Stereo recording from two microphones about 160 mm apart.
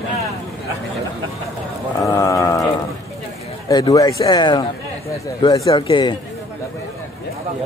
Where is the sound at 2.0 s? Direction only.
20° left (ahead or behind).